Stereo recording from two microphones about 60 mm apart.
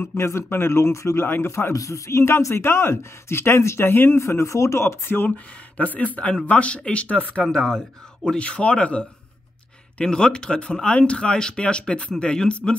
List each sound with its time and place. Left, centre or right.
0.0 s speech: left
1.2 s speech: left
1.5 s speech: left
5.8 s speech: left
7.4 s speech: centre